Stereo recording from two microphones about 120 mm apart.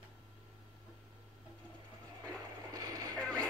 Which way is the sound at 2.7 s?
30° right (ahead or behind).